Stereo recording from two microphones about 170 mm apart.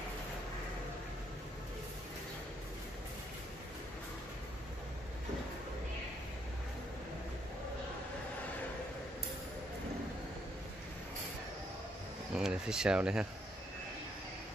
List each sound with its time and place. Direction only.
12.4 s speech: 5° right (ahead or behind)